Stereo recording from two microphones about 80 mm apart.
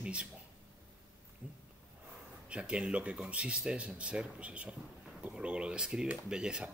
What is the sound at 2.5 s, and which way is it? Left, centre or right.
Speech, centre.